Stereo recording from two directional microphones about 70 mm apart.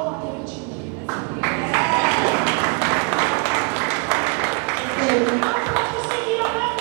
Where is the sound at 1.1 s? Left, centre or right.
Right.